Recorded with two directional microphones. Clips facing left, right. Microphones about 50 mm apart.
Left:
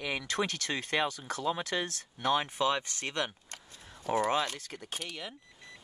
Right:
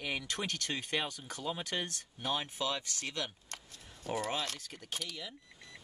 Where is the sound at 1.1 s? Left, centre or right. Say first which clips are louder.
Left 6 dB; left.